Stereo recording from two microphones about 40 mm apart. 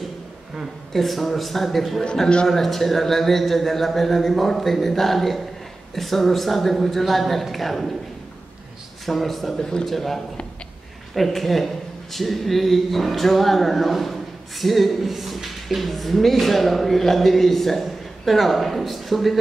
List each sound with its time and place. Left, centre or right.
0.9 s a woman's voice: centre
9.0 s a woman's voice: centre
9.6 s a man's voice: centre
9.8 s a woman's voice: centre